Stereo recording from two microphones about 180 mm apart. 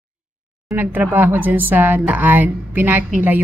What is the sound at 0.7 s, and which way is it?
Speech, 10° right (ahead or behind).